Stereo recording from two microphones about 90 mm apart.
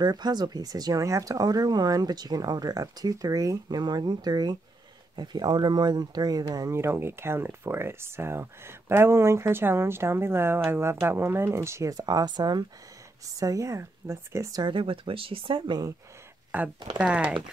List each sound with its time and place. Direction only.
0.0 s speech: 50° right (ahead or behind)
6.7 s speech: 30° right (ahead or behind); by 12.6 s 50° right (ahead or behind)
13.2 s speech: 40° right (ahead or behind)
14.6 s speech: 70° right (ahead or behind)
16.5 s speech: 20° right (ahead or behind)